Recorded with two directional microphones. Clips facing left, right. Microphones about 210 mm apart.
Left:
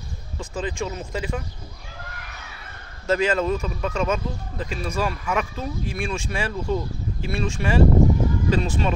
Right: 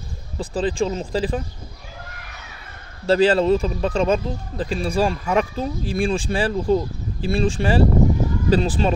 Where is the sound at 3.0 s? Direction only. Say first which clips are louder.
Right 5 dB; 30° right (ahead or behind).